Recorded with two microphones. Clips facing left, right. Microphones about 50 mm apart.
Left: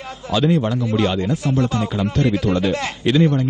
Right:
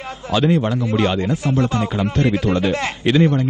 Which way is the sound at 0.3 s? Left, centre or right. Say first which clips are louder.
Right 1 dB; right.